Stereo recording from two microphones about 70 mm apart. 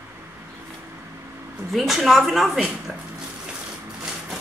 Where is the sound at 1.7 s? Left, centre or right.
Centre.